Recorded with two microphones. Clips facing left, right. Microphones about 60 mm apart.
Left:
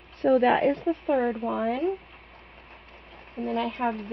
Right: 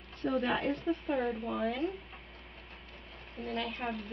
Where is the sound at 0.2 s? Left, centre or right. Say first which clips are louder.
Left 11 dB; left.